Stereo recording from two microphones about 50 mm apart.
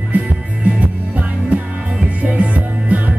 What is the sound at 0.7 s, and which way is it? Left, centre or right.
Music, right.